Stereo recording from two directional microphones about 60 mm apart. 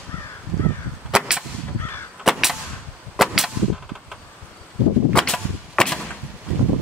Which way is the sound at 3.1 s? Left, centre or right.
Centre.